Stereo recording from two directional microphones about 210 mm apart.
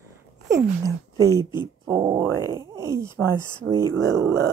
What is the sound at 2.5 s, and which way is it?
Speech, 15° right (ahead or behind).